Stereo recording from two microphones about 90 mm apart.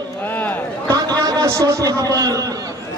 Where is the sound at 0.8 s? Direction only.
45° right (ahead or behind).